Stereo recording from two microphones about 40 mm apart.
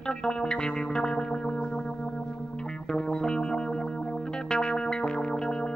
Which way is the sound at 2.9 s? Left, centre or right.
Centre.